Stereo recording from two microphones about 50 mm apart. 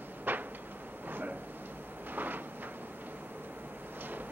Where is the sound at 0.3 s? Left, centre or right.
Right.